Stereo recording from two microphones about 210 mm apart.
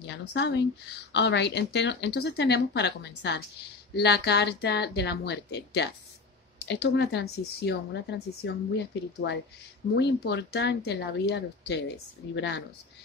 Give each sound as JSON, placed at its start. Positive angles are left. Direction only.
{"t": 0.0, "sound": "a woman's voice", "side_deg": 55}